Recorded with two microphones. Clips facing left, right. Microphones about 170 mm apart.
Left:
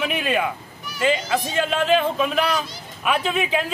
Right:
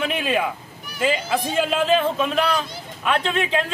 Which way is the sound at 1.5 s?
5° right (ahead or behind).